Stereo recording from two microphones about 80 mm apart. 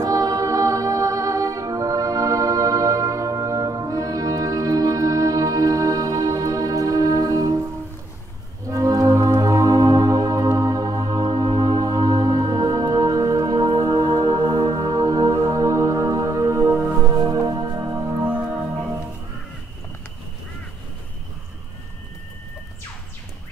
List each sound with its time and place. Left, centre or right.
0.0 s music: right
8.6 s music: right
17.1 s music: right
18.3 s music: centre